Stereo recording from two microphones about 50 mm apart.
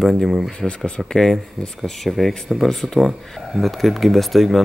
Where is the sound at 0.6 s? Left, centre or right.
Left.